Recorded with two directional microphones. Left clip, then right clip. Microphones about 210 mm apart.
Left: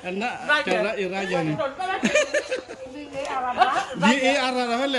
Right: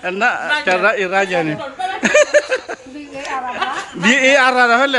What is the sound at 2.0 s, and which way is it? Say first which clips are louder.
Chuckle: right 11 dB; 5° left (ahead or behind).